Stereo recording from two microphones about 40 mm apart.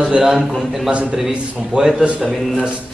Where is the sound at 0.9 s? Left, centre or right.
Right.